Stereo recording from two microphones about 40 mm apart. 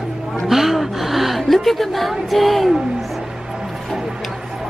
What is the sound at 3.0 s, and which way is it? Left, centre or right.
Music, centre.